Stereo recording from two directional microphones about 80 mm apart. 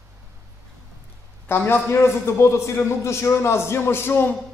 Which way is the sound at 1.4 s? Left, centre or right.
Left.